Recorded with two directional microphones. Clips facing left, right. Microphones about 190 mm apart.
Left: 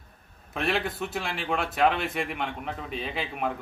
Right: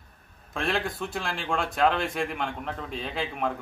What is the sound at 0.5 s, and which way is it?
A man's voice, 5° left (ahead or behind).